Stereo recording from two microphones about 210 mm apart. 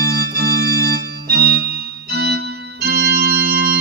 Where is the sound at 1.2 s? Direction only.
45° right (ahead or behind).